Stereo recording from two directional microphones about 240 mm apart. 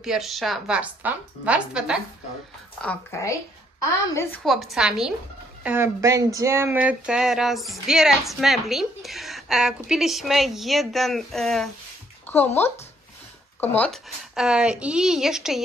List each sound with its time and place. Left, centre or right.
0.0 s speech: centre
2.8 s speech: centre
4.4 s speech: centre
12.3 s a sound: centre
13.6 s speech: centre